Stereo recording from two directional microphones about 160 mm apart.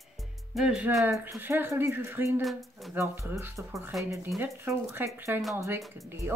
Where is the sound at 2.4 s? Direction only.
Centre (ahead or behind).